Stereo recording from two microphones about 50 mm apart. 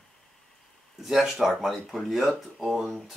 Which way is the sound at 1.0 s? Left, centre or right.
Centre.